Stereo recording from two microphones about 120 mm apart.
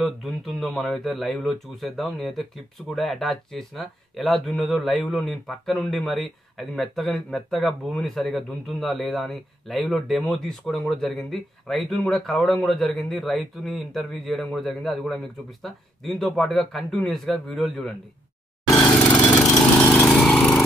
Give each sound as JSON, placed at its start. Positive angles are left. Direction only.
{"t": 0.0, "sound": "speech", "side_deg": 0}
{"t": 19.2, "sound": "lawn mower", "side_deg": 25}